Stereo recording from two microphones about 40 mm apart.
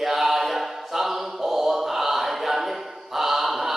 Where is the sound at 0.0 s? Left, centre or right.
Centre.